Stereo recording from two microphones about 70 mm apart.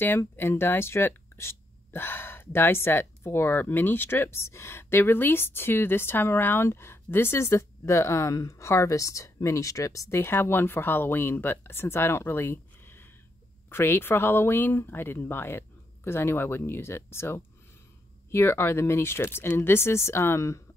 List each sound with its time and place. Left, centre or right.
0.4 s speech: left